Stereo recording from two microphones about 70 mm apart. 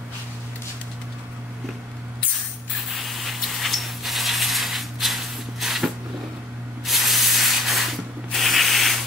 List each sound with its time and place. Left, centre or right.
2.9 s a sound: centre
6.9 s spray: centre
8.3 s sanding: centre